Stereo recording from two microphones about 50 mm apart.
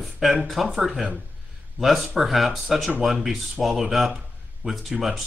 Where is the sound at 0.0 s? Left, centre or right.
Centre.